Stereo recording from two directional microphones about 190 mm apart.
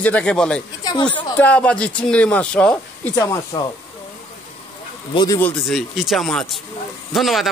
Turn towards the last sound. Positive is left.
turn(degrees=0)  # may be behind; listen again after turning